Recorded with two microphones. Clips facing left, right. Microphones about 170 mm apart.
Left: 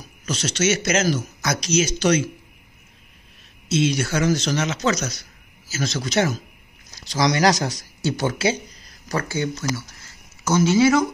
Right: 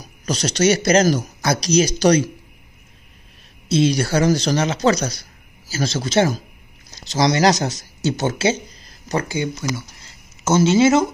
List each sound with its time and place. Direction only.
0.0 s speech: 40° right (ahead or behind)
3.6 s speech: 35° right (ahead or behind)
9.1 s speech: 15° right (ahead or behind)